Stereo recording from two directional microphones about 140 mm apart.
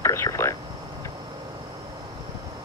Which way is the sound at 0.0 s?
20° left (ahead or behind).